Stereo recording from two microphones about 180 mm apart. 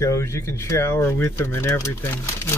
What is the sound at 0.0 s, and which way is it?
Speech, 15° left (ahead or behind).